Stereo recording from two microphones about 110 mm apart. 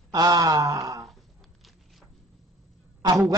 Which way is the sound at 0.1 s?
35° right (ahead or behind).